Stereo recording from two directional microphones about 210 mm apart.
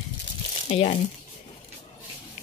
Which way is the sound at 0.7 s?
30° left (ahead or behind).